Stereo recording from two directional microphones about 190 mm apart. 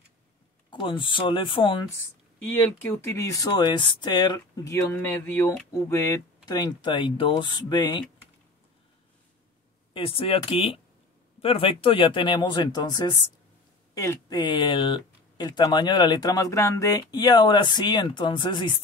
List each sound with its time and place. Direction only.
0.7 s speech: 25° left (ahead or behind)
2.6 s speech: 15° left (ahead or behind)
9.9 s speech: 30° left (ahead or behind)